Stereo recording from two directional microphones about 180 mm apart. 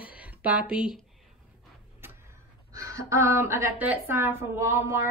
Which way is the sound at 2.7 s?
20° right (ahead or behind).